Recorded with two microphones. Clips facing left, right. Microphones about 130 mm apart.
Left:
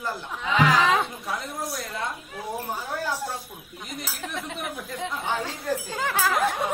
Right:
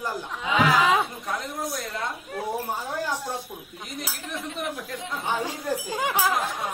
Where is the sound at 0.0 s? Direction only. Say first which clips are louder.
Right 1 dB; 10° right (ahead or behind).